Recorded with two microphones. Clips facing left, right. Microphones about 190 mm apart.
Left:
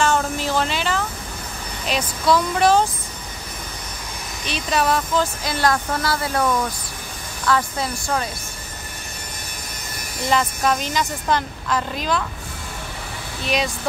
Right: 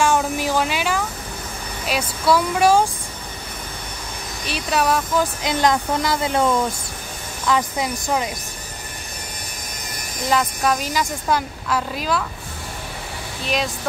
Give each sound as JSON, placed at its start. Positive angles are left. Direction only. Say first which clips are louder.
{"t": 0.0, "sound": "a sound", "louder": "right 1 dB", "side_deg": -10}
{"t": 1.9, "sound": "speech", "louder": "even", "side_deg": -10}
{"t": 4.5, "sound": "speech", "louder": "even", "side_deg": -5}
{"t": 10.3, "sound": "speech", "louder": "even", "side_deg": -5}